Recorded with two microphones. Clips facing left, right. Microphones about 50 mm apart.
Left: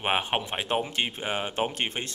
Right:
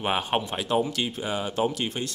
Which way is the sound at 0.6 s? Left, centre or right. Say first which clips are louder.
Right 2 dB; left.